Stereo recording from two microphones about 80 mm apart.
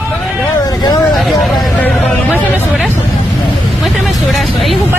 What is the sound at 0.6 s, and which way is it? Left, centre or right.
Vehicle, left.